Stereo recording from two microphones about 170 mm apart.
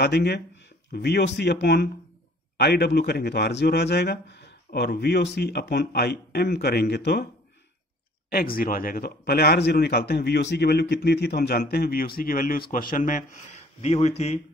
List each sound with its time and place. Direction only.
0.0 s speech: 75° left (ahead or behind)
4.6 s speech: 75° left (ahead or behind)
8.3 s speech: 60° left (ahead or behind); by 14.4 s 40° left (ahead or behind)